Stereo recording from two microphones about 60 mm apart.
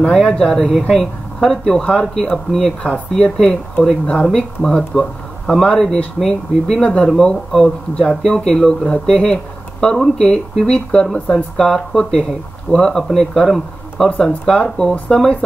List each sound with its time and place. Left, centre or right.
0.0 s speech: centre
2.8 s speech: centre
3.3 s speech: centre